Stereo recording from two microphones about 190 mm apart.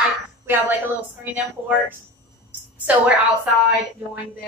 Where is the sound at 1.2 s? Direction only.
10° right (ahead or behind).